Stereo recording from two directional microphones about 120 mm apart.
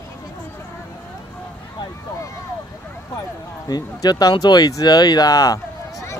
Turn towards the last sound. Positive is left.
turn(degrees=30)  # may be behind; listen again after turning